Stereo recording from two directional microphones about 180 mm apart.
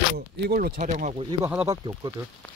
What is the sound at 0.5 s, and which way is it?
Speech, 50° right (ahead or behind).